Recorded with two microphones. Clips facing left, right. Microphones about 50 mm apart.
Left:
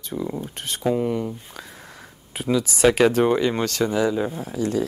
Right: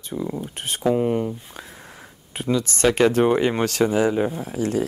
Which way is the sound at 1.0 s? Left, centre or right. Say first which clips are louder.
Right 2 dB; right.